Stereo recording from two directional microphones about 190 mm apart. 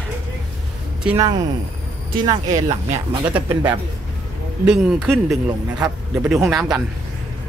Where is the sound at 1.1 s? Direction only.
20° right (ahead or behind).